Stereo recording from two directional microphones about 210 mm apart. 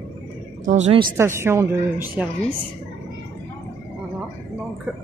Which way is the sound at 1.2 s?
10° right (ahead or behind).